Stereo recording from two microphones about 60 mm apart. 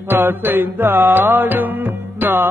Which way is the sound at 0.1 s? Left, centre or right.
Right.